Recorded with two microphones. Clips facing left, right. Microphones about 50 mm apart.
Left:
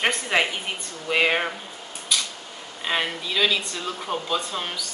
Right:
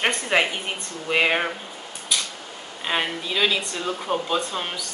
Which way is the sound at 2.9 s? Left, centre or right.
Centre.